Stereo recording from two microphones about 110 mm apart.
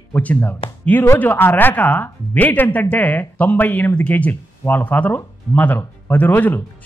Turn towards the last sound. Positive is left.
turn(degrees=20)  # may be behind; listen again after turning